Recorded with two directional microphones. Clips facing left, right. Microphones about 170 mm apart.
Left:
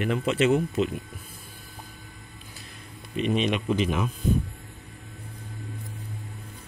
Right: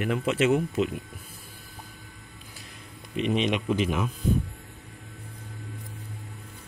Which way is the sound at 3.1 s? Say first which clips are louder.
Even; 20° right (ahead or behind).